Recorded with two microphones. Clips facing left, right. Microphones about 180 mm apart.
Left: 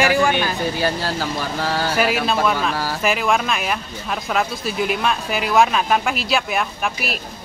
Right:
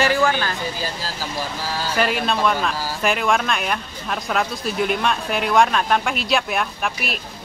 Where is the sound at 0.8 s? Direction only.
65° left (ahead or behind).